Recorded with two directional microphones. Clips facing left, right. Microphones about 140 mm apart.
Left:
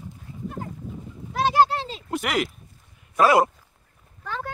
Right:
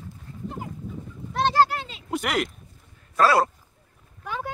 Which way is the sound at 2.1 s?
Centre (ahead or behind).